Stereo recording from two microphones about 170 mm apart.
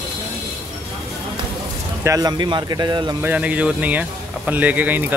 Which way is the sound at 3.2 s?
10° right (ahead or behind).